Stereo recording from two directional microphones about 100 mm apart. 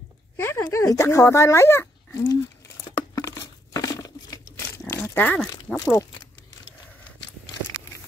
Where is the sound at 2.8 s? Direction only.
35° left (ahead or behind); by 5.4 s 20° left (ahead or behind).